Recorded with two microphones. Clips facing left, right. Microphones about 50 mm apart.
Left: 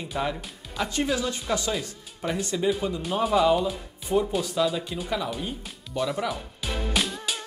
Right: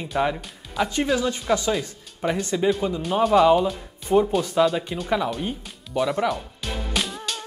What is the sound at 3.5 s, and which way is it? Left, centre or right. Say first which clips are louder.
Speech: right 4 dB; centre.